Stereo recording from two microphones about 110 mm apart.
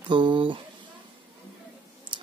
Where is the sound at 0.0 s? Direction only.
45° right (ahead or behind).